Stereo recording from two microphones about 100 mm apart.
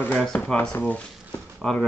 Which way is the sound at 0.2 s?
5° left (ahead or behind).